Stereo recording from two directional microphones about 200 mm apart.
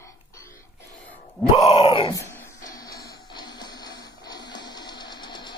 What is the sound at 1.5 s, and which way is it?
Groan, 30° left (ahead or behind).